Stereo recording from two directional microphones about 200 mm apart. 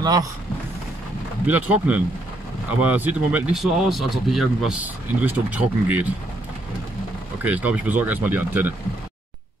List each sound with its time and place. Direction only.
0.0 s speech: 20° right (ahead or behind)
1.5 s speech: 5° right (ahead or behind)
7.4 s speech: 5° right (ahead or behind)